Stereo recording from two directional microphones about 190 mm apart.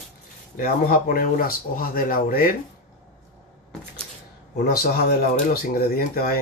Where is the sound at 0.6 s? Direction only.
50° left (ahead or behind).